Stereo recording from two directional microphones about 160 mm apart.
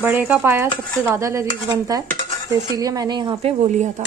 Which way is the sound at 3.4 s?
40° right (ahead or behind).